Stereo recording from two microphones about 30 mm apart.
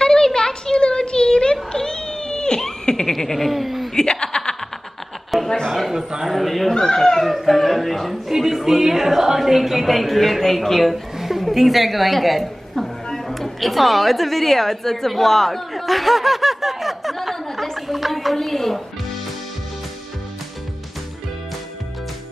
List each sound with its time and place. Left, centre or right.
0.0 s a sound: left
3.4 s speech: centre
3.9 s chuckle: left
5.3 s a sound: centre
6.2 s speech: centre
6.7 s speech: left
7.2 s speech: centre
8.3 s music: centre
9.4 s speech: centre
11.1 s music: centre
11.5 s a woman's voice: centre
17.7 s a sound: centre
18.3 s a woman's voice: centre